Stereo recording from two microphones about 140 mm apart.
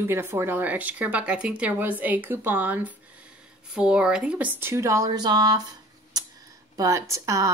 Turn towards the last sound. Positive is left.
turn(degrees=-25)  # may be behind; listen again after turning